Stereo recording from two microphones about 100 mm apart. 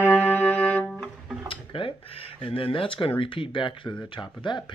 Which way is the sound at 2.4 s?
60° left (ahead or behind).